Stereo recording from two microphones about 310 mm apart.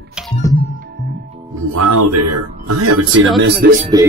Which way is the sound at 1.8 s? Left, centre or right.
Right.